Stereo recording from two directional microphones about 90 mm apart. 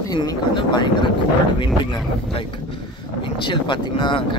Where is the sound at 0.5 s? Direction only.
60° left (ahead or behind).